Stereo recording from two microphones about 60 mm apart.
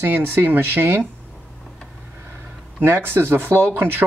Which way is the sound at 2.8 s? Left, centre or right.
Right.